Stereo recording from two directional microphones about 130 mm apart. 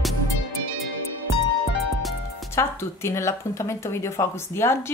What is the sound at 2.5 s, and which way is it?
Speech, 20° left (ahead or behind).